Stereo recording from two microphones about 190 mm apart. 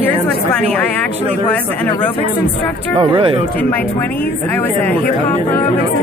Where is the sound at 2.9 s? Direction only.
25° right (ahead or behind).